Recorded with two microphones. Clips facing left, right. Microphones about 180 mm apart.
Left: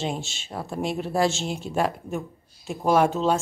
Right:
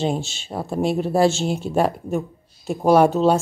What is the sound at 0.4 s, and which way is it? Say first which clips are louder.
Speech: right 6 dB; 30° right (ahead or behind).